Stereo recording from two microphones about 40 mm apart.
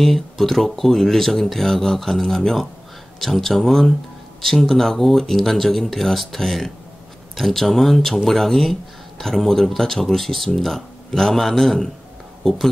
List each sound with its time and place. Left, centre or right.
0.0 s speech: centre